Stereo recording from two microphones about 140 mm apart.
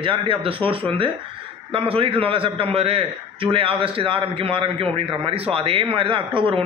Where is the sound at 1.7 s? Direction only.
40° right (ahead or behind).